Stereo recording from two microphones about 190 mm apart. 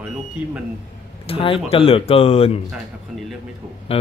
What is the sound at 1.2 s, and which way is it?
Speech, 30° left (ahead or behind).